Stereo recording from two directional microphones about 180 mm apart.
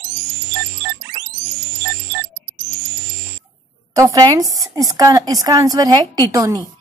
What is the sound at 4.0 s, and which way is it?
A woman's voice, 20° right (ahead or behind).